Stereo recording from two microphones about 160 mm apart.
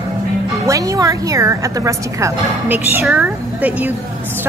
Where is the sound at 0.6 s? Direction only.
20° right (ahead or behind).